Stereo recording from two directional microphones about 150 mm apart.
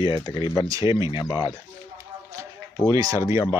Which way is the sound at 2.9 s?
20° right (ahead or behind).